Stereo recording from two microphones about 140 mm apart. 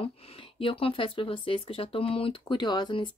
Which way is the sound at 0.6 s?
40° left (ahead or behind).